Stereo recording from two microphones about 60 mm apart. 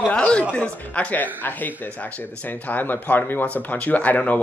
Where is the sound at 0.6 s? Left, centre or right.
Left.